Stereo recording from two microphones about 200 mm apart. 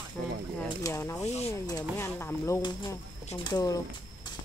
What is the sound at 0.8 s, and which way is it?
Speech, 15° left (ahead or behind).